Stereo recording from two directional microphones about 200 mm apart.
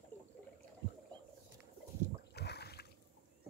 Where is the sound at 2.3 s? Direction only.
55° left (ahead or behind).